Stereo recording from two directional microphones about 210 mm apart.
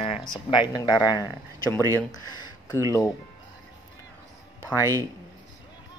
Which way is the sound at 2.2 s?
20° left (ahead or behind).